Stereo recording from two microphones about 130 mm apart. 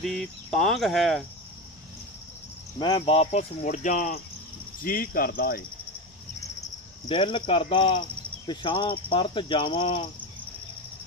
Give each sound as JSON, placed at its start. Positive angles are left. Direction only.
{"t": 0.0, "sound": "speech", "side_deg": 0}
{"t": 2.8, "sound": "speech", "side_deg": 45}
{"t": 4.8, "sound": "speech", "side_deg": 90}
{"t": 7.1, "sound": "cricket", "side_deg": 40}